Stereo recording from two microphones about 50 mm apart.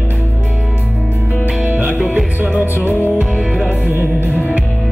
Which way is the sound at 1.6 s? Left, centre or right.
Right.